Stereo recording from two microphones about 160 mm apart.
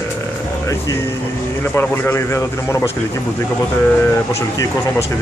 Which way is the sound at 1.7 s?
15° left (ahead or behind).